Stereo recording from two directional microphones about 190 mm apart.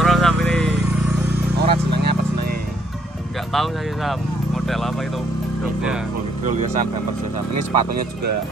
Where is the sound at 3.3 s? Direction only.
Centre (ahead or behind).